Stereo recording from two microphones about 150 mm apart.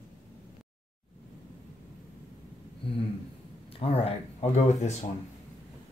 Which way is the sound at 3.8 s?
40° left (ahead or behind).